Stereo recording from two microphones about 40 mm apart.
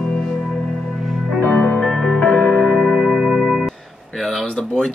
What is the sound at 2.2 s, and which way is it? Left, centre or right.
Music, left.